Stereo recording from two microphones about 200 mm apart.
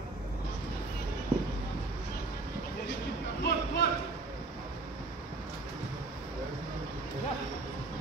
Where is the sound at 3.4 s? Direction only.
55° left (ahead or behind).